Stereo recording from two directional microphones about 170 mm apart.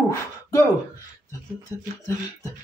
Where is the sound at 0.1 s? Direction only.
15° left (ahead or behind).